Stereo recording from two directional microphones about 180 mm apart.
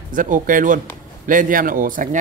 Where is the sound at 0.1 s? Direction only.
50° right (ahead or behind).